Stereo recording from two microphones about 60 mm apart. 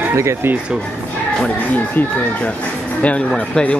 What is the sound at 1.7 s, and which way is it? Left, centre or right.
Speech, left.